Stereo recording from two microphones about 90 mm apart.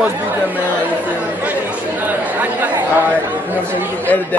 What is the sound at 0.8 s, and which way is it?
A man's voice, 15° right (ahead or behind).